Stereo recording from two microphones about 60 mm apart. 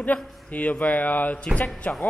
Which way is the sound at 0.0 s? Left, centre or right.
Left.